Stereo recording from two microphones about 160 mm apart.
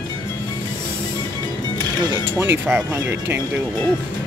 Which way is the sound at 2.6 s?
15° right (ahead or behind).